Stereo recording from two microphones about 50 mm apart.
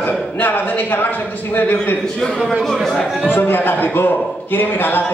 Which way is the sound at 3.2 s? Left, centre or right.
Left.